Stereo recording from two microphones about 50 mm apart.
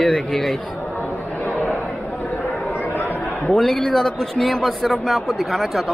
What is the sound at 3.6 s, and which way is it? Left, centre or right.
Speech, centre.